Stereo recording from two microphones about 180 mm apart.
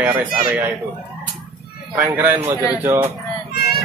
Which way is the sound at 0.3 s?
10° right (ahead or behind).